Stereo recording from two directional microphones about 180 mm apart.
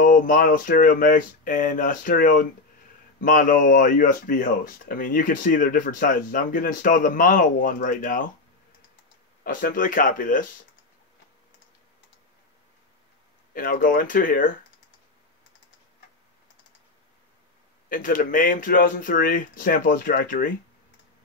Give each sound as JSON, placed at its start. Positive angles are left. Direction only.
{"t": 0.0, "sound": "speech", "side_deg": 50}
{"t": 9.4, "sound": "speech", "side_deg": 50}
{"t": 13.5, "sound": "speech", "side_deg": 50}
{"t": 17.8, "sound": "speech", "side_deg": 50}